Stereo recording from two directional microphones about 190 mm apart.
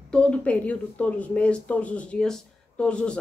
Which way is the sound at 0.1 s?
5° left (ahead or behind).